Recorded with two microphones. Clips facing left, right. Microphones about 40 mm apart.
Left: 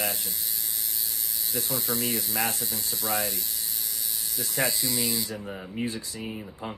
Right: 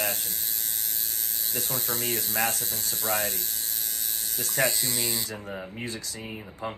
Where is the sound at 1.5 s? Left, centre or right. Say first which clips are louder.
Left 2 dB; centre.